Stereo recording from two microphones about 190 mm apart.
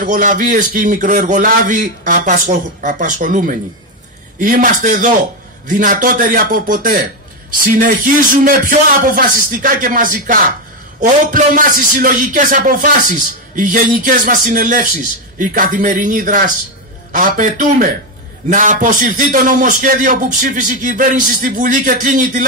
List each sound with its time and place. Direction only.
0.0 s speech: 45° right (ahead or behind)